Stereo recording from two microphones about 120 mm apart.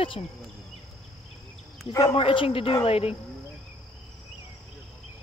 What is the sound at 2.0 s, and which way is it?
A woman's voice, 50° left (ahead or behind).